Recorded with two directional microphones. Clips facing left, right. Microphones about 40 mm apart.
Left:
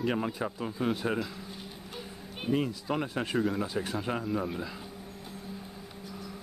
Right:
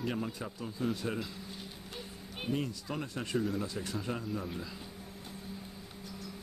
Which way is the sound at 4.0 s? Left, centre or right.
Left.